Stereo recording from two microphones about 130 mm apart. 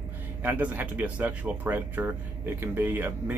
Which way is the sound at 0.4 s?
15° right (ahead or behind).